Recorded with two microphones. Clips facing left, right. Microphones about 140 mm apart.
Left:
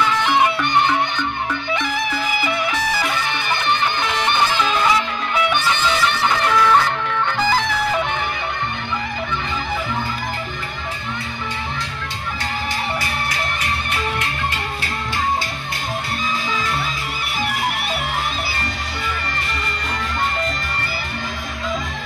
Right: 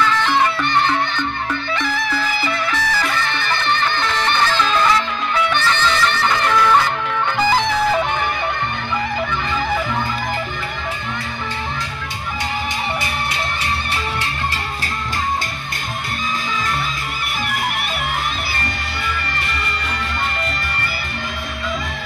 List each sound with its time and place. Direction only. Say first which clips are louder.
0.0 s music: even; 15° left (ahead or behind)
7.2 s music: right 3 dB; 15° right (ahead or behind)